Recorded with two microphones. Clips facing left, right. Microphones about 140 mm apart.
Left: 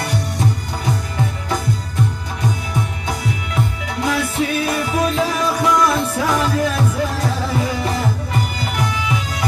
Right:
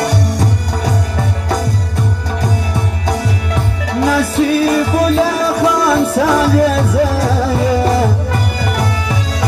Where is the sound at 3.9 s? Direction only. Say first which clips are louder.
Right 7 dB; 35° right (ahead or behind).